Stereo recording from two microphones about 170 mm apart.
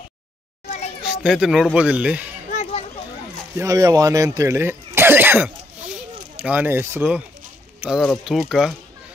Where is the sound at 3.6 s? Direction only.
20° right (ahead or behind).